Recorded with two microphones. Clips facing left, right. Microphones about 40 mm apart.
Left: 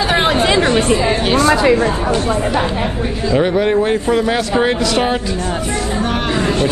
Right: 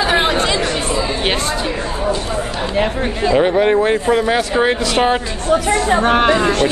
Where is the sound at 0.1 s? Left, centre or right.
Centre.